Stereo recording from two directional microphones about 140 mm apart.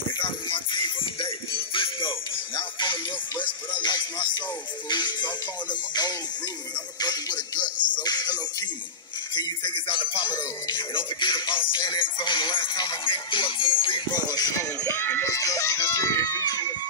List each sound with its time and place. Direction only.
0.2 s music: 35° left (ahead or behind)